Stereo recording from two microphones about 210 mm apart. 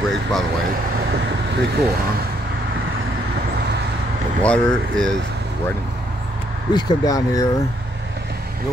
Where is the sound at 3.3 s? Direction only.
50° right (ahead or behind).